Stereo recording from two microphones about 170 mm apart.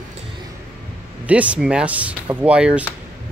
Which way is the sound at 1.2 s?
10° right (ahead or behind).